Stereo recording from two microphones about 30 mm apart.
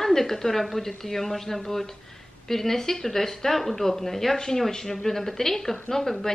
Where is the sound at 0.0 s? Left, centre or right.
Centre.